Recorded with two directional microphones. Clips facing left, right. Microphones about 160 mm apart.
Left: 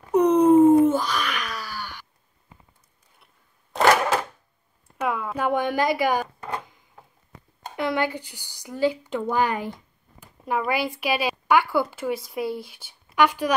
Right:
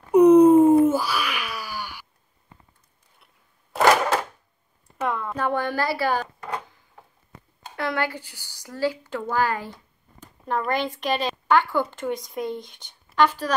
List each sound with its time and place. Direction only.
0.1 s a sound: 10° right (ahead or behind)
3.7 s cash register: centre (ahead or behind)
5.0 s speech: 5° left (ahead or behind)
7.7 s speech: 15° left (ahead or behind)